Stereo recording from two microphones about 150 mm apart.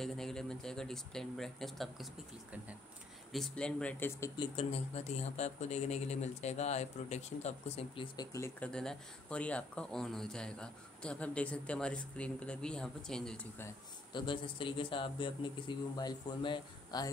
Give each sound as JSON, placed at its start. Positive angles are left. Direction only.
{"t": 0.0, "sound": "speech", "side_deg": 5}
{"t": 3.3, "sound": "speech", "side_deg": 0}
{"t": 4.4, "sound": "speech", "side_deg": 40}
{"t": 8.5, "sound": "speech", "side_deg": 5}
{"t": 14.1, "sound": "speech", "side_deg": 35}